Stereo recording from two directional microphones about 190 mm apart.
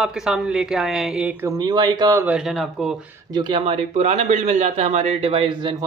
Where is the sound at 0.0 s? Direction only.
5° right (ahead or behind).